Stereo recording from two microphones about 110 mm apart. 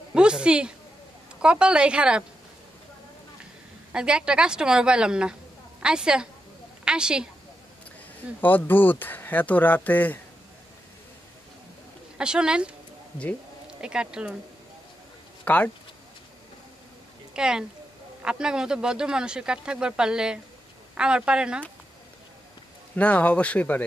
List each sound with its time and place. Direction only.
0.1 s a woman's voice: 10° right (ahead or behind)
3.9 s a woman's voice: 10° right (ahead or behind)
8.4 s speech: 15° left (ahead or behind)
12.2 s speech: 10° right (ahead or behind)
15.4 s speech: 15° left (ahead or behind)
17.3 s speech: 5° right (ahead or behind)
22.9 s speech: 15° left (ahead or behind)